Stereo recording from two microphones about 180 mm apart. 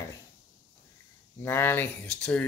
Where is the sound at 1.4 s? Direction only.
15° left (ahead or behind).